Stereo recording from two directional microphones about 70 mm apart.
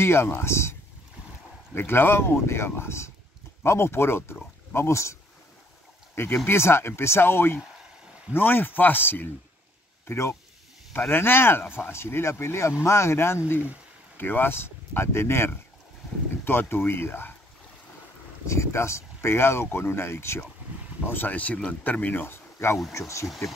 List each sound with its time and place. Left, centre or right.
0.0 s speech: left
6.4 s speech: left
10.0 s speech: left
11.1 s speech: left
18.5 s speech: left
21.1 s speech: left
23.2 s speech: centre